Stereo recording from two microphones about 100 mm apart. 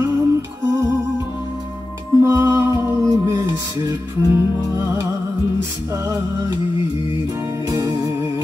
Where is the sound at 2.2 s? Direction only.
25° right (ahead or behind).